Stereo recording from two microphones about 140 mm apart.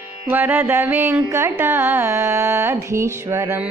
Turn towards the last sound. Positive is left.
turn(degrees=-20)  # may be behind; listen again after turning